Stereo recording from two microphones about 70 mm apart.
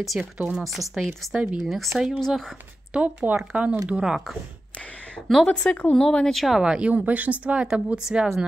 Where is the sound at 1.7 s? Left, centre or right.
Centre.